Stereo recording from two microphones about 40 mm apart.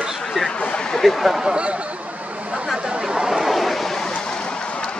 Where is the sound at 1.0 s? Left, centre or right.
Centre.